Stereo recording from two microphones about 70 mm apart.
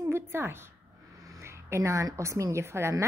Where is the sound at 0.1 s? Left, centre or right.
Right.